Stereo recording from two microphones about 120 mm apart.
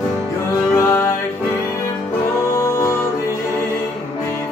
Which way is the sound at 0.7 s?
20° left (ahead or behind).